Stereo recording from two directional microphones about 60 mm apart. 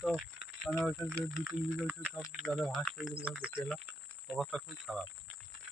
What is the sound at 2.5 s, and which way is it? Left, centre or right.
Speech, centre.